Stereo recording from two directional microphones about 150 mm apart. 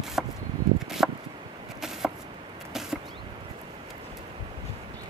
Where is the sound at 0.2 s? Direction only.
5° right (ahead or behind).